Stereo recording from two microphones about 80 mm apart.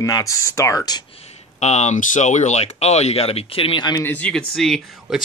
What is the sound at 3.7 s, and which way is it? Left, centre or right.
Speech, left.